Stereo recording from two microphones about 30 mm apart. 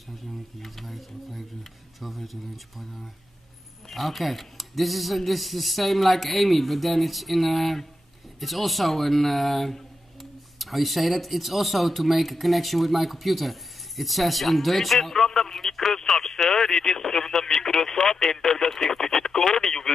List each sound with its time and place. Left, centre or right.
0.6 s speech: centre